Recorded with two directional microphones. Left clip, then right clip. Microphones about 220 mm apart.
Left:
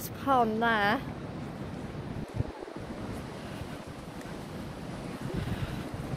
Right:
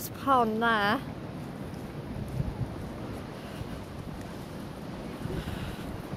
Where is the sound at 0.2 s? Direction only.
15° right (ahead or behind).